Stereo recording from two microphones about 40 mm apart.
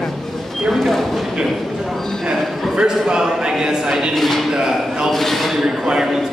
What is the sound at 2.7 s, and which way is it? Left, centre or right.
A man's voice, centre.